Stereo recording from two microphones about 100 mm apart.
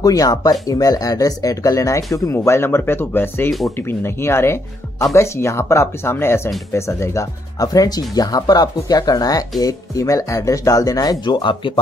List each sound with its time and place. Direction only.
0.0 s speech: 40° left (ahead or behind); by 11.8 s 55° left (ahead or behind)